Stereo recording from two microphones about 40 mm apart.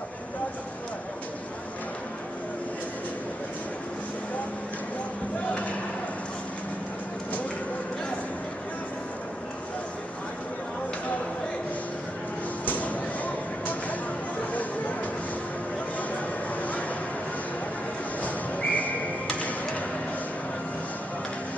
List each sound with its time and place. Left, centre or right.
5.5 s slam: left
12.6 s a sound: left
14.5 s chatter: left
18.2 s whistling: left